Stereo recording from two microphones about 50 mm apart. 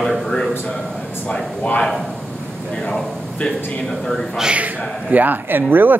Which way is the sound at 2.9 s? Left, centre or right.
Centre.